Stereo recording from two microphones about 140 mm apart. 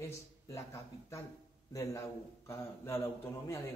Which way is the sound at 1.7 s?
20° left (ahead or behind).